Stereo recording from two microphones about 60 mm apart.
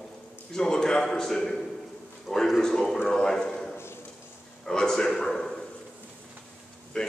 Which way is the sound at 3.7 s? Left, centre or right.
Left.